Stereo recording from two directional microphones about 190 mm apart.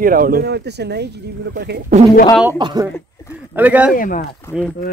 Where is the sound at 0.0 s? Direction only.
50° right (ahead or behind).